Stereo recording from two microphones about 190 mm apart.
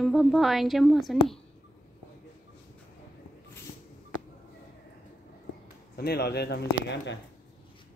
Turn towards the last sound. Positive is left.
turn(degrees=65)  # may be behind; listen again after turning